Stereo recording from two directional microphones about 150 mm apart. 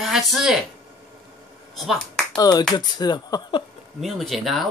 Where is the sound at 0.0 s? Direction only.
Centre (ahead or behind).